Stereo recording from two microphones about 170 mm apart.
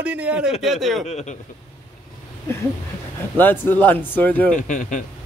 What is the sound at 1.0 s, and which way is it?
Speech, 40° left (ahead or behind).